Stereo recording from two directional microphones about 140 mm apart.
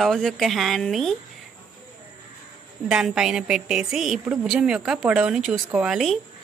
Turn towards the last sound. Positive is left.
turn(degrees=-5)  # may be behind; listen again after turning